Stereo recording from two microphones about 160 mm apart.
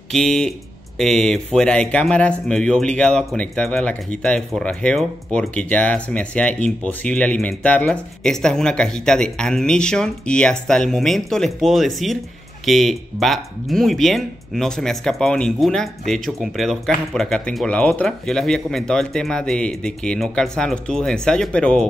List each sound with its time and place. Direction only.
0.1 s speech: 5° left (ahead or behind)